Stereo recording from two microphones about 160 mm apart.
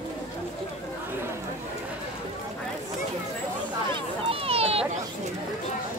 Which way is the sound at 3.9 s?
35° right (ahead or behind).